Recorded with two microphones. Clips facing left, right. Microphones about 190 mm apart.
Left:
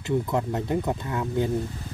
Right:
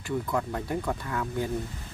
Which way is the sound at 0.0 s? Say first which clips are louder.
Left 4 dB; 20° left (ahead or behind).